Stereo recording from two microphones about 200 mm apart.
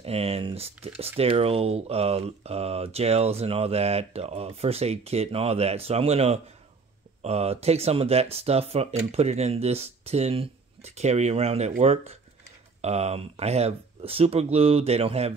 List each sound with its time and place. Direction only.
0.0 s speech: 30° right (ahead or behind)